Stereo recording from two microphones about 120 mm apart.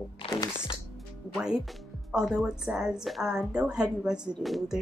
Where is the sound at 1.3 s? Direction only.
5° right (ahead or behind).